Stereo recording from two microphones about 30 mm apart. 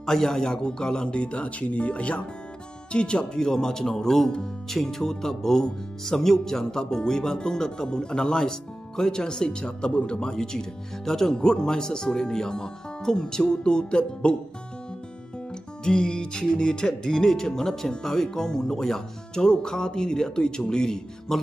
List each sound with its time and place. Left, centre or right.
0.0 s speech: centre
0.6 s speech: left
2.9 s speech: left
3.3 s speech: centre
10.3 s speech: centre; by 14.3 s left
15.8 s speech: left; by 19.0 s centre
19.3 s speech: left
21.3 s speech: centre